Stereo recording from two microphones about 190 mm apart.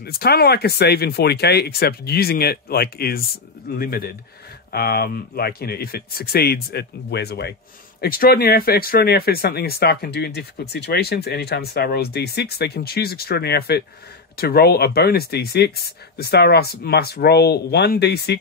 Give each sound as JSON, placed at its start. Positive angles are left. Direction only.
{"t": 0.0, "sound": "speech", "side_deg": 55}